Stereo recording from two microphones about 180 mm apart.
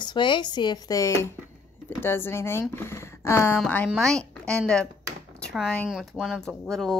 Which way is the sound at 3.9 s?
5° left (ahead or behind).